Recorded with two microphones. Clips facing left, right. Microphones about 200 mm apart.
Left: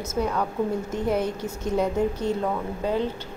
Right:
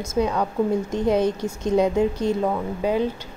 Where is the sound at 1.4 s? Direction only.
15° right (ahead or behind).